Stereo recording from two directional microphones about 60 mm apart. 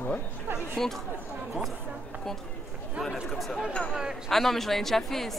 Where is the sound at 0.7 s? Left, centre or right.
Centre.